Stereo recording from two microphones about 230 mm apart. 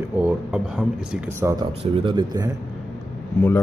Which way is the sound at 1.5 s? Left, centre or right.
Centre.